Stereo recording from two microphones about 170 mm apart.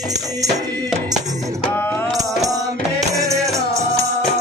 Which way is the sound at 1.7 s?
10° left (ahead or behind).